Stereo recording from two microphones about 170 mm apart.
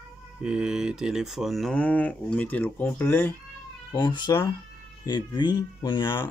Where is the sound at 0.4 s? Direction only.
5° right (ahead or behind); by 3.3 s 10° left (ahead or behind).